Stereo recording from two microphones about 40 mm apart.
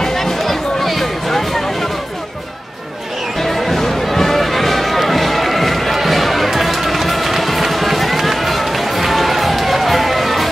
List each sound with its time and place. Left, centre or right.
0.0 s music: centre
3.3 s music: centre